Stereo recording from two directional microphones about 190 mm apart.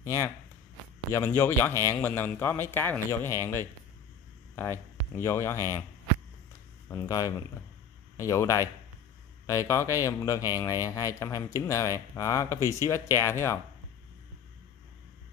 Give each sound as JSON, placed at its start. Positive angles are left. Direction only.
{"t": 0.0, "sound": "speech", "side_deg": 15}
{"t": 6.9, "sound": "speech", "side_deg": 20}
{"t": 12.5, "sound": "speech", "side_deg": -20}
{"t": 12.8, "sound": "speech", "side_deg": 15}